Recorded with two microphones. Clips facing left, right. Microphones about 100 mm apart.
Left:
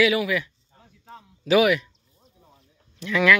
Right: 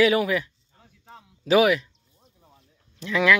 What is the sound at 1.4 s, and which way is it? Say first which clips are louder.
Speech: even; 30° right (ahead or behind).